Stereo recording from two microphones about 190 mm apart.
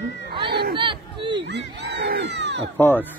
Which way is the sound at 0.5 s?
60° right (ahead or behind).